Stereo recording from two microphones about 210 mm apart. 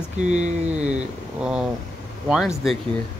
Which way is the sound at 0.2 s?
35° right (ahead or behind).